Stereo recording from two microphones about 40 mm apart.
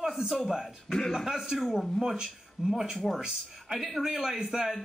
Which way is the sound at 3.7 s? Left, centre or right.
Centre.